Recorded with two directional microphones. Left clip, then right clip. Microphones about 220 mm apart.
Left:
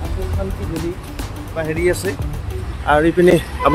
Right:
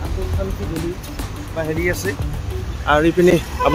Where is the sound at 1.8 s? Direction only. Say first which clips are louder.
Left 6 dB; 25° left (ahead or behind).